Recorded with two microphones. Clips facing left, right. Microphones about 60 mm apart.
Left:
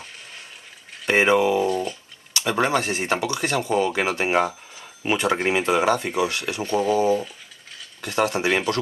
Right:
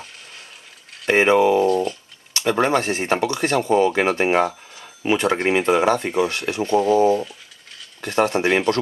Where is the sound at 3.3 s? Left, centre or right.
Centre.